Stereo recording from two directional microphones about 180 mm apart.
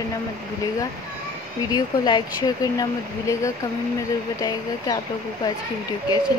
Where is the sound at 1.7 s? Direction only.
25° left (ahead or behind).